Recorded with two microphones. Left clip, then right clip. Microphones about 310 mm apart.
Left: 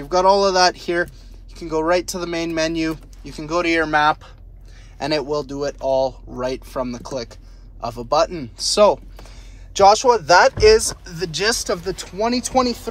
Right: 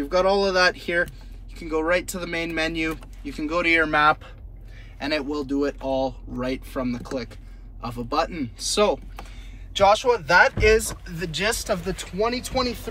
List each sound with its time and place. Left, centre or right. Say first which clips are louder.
0.1 s speech: left 6 dB; centre